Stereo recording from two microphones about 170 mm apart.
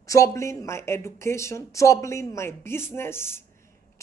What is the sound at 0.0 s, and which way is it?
Speech, 20° left (ahead or behind).